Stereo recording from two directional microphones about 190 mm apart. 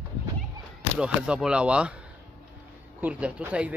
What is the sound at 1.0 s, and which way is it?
Speech, 5° right (ahead or behind).